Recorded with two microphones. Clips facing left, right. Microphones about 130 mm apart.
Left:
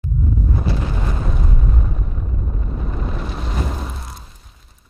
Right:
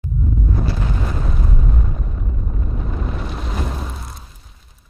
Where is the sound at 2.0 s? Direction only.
Centre (ahead or behind).